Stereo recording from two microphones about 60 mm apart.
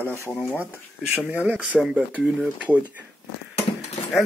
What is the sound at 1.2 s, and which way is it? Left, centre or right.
Speech, right.